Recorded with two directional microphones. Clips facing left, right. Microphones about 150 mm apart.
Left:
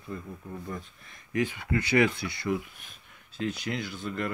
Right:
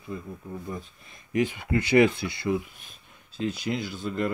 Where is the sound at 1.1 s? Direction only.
25° right (ahead or behind).